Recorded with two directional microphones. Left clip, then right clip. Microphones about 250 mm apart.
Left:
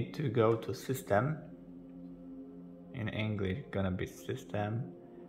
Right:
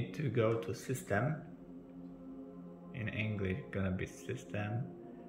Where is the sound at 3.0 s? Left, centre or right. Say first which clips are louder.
Left 2 dB; centre.